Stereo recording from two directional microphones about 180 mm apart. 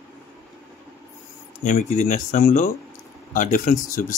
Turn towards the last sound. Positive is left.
turn(degrees=45)  # may be behind; listen again after turning